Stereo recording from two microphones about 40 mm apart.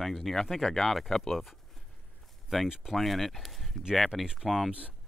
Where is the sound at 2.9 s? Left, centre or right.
Centre.